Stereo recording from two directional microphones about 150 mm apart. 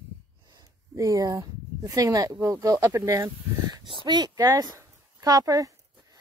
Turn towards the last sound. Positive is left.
turn(degrees=-25)  # may be behind; listen again after turning